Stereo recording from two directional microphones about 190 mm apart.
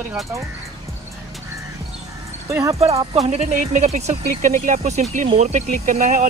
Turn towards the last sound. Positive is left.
turn(degrees=-40)  # may be behind; listen again after turning